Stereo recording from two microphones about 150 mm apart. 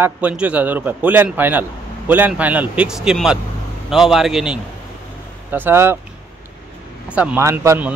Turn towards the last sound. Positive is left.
turn(degrees=-15)  # may be behind; listen again after turning